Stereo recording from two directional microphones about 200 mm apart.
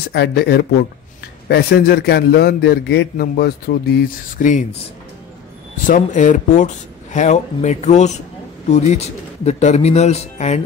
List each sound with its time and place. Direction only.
0.1 s a man's voice: 55° left (ahead or behind)
4.4 s speech: 40° left (ahead or behind)
5.9 s speech: 40° left (ahead or behind)